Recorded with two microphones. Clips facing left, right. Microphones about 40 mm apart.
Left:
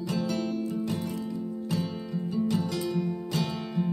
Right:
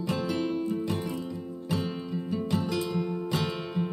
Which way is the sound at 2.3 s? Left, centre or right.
Right.